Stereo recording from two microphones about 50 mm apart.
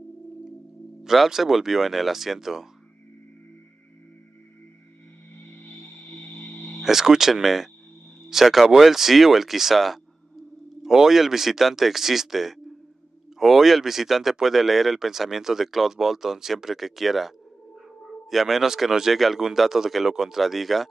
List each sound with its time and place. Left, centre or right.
1.0 s speech: centre
5.3 s music: left
6.8 s speech: centre
18.3 s speech: centre